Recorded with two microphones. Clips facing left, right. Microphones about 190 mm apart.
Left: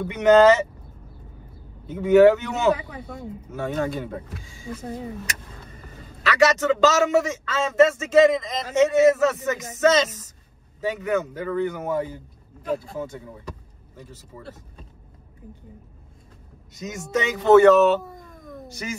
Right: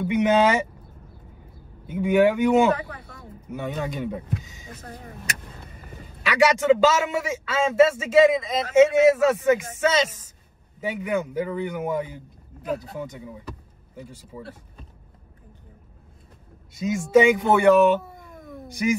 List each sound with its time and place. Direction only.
0.0 s a man's voice: 10° right (ahead or behind)
1.9 s a man's voice: 10° right (ahead or behind)
6.2 s a man's voice: 10° right (ahead or behind)
13.9 s a man's voice: 10° right (ahead or behind)
16.7 s speech: 10° right (ahead or behind)